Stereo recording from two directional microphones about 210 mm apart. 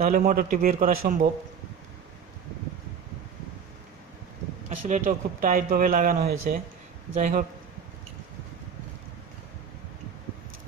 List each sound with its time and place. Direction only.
0.0 s a man's voice: 40° right (ahead or behind)
4.6 s speech: 35° right (ahead or behind)